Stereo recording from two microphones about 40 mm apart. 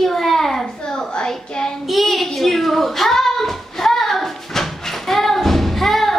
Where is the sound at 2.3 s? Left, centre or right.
Centre.